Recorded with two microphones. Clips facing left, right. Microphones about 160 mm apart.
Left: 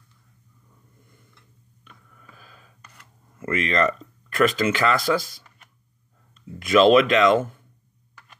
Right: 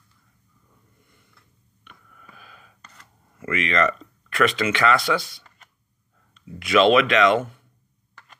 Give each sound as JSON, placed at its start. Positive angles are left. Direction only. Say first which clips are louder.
{"t": 2.3, "sound": "gasp", "louder": "right 2 dB", "side_deg": 40}
{"t": 3.3, "sound": "speech", "louder": "even", "side_deg": 40}
{"t": 8.1, "sound": "tick", "louder": "right 1 dB", "side_deg": 10}